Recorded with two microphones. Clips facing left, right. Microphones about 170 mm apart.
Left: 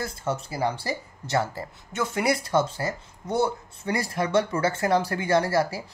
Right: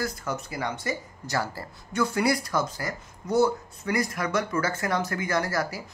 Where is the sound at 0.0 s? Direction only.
30° left (ahead or behind).